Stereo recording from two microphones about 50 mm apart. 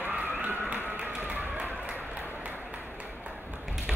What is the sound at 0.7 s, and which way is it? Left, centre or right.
Tap, right.